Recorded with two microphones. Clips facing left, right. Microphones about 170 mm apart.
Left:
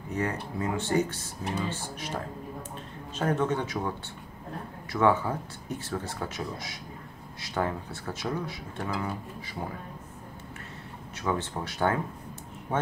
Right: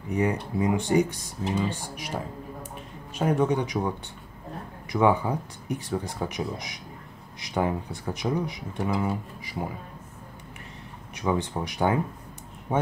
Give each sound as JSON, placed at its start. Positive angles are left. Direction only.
{"t": 0.1, "sound": "speech", "side_deg": -15}
{"t": 4.9, "sound": "speech", "side_deg": -15}
{"t": 11.1, "sound": "speech", "side_deg": -15}